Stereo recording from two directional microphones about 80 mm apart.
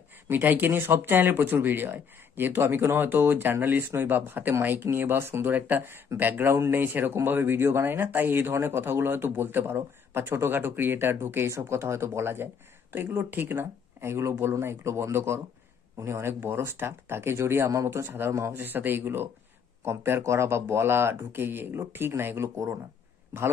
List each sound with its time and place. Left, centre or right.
0.3 s speech: right
6.5 s speech: right
6.8 s speech: right